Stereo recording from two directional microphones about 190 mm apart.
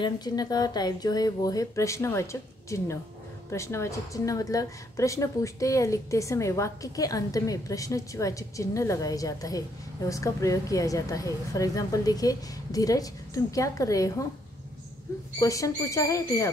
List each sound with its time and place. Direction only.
0.0 s speech: 20° left (ahead or behind)
3.5 s a woman's voice: 15° left (ahead or behind)
15.3 s a woman's voice: 15° left (ahead or behind)